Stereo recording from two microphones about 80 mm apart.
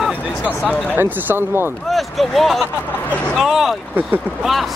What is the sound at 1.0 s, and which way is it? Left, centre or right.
Speech, right.